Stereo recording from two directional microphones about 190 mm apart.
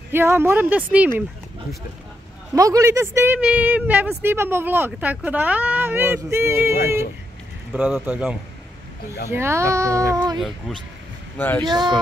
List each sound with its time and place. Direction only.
0.1 s speech: 10° right (ahead or behind)
2.5 s speech: 15° right (ahead or behind)
11.3 s speech: 10° left (ahead or behind)
11.6 s speech: 20° right (ahead or behind)